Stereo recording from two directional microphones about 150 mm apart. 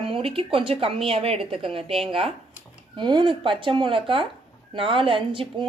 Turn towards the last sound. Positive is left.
turn(degrees=-35)  # may be behind; listen again after turning